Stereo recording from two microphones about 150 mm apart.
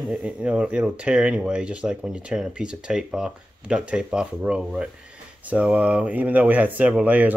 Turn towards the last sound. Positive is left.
turn(degrees=-10)  # may be behind; listen again after turning